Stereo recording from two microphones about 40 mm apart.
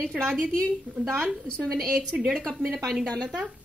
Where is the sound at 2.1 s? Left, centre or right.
Right.